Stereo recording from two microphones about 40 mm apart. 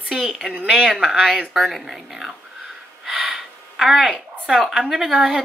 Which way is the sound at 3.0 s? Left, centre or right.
Centre.